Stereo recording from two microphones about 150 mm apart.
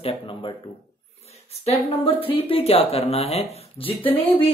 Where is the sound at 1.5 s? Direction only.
45° left (ahead or behind).